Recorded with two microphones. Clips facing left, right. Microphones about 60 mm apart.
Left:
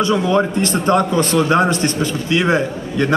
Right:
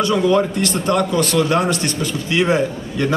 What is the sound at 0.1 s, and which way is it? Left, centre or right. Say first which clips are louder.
Speech: right 1 dB; centre.